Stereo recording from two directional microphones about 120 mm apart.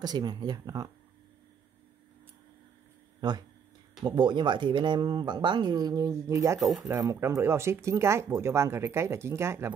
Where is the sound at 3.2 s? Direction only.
35° right (ahead or behind).